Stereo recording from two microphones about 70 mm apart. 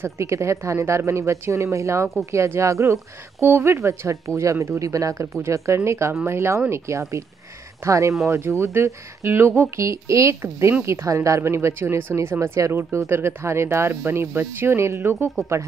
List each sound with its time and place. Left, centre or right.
0.0 s a woman's voice: right
9.6 s a woman's voice: right